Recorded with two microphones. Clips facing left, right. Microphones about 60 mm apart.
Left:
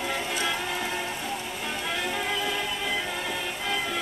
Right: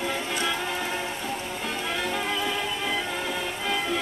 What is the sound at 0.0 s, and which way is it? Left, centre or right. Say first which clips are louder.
Music: right 1 dB; centre.